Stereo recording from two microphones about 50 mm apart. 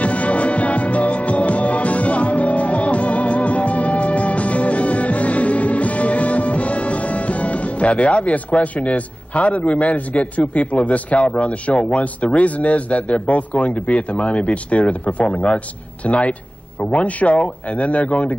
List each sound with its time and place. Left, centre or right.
0.0 s music: left
16.1 s speech: left